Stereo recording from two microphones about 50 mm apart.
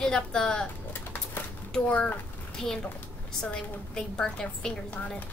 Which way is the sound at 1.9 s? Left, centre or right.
Left.